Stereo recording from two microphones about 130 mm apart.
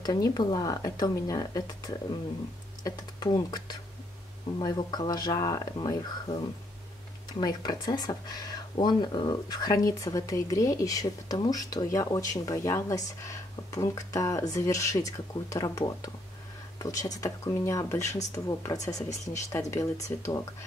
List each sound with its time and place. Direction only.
0.0 s speech: 30° left (ahead or behind)